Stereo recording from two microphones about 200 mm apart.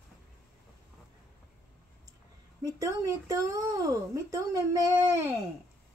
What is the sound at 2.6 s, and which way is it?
Speech, 15° right (ahead or behind).